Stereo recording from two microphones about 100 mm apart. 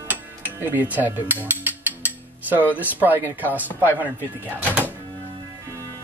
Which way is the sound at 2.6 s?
20° right (ahead or behind).